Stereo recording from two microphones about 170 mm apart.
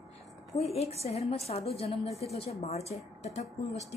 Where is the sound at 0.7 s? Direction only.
40° left (ahead or behind).